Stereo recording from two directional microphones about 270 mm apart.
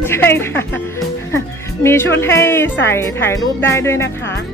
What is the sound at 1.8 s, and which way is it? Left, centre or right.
Speech, centre.